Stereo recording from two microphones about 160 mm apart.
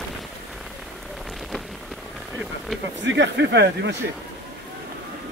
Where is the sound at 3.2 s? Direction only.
90° right.